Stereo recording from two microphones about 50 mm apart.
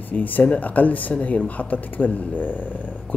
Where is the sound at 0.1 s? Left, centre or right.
Left.